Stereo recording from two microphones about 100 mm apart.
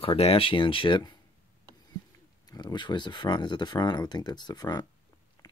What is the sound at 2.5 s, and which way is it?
Speech, 50° left (ahead or behind).